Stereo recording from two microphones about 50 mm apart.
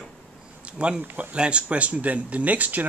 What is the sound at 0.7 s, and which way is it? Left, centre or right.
Speech, right.